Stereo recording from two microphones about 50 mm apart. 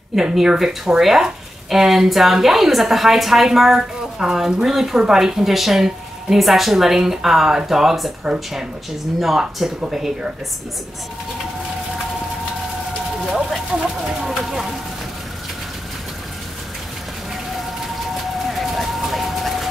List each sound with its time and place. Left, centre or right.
0.1 s speech: centre
8.2 s speech: centre
14.0 s speech: centre
18.1 s a sound: centre